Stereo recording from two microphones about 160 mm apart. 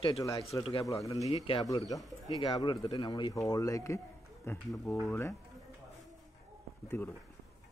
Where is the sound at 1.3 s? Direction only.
35° left (ahead or behind); by 5.3 s 15° left (ahead or behind).